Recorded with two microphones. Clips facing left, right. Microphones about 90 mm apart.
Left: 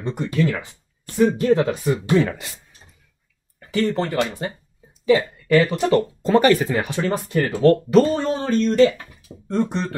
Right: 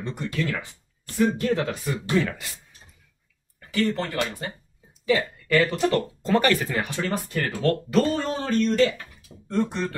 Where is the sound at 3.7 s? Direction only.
25° left (ahead or behind).